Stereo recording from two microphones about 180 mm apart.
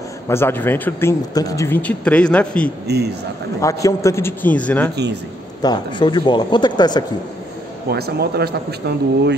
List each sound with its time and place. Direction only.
0.3 s a man's voice: 15° left (ahead or behind)
3.6 s a man's voice: 15° left (ahead or behind)
5.6 s speech: 25° left (ahead or behind)
7.9 s a man's voice: 60° right (ahead or behind)